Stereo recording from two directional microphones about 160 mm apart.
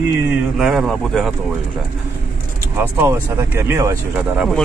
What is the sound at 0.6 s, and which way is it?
Speech, centre (ahead or behind).